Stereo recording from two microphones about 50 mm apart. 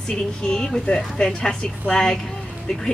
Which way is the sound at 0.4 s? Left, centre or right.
Centre.